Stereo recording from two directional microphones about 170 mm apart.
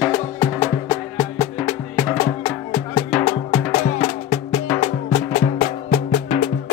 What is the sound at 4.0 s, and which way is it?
Music, 35° left (ahead or behind).